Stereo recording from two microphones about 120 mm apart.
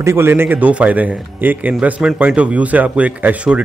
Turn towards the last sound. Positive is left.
turn(degrees=-10)  # may be behind; listen again after turning